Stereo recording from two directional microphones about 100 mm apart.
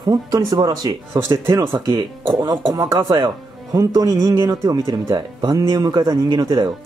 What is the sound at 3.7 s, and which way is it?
Speech, 35° right (ahead or behind).